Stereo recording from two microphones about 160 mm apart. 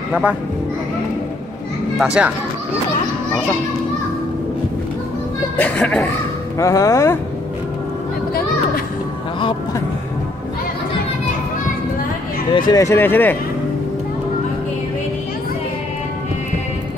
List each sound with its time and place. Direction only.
0.1 s speech: 10° right (ahead or behind)
2.0 s a child's voice: 5° right (ahead or behind)
5.6 s speech: 5° left (ahead or behind)
6.6 s speech: 20° left (ahead or behind)
12.5 s speech: 25° left (ahead or behind)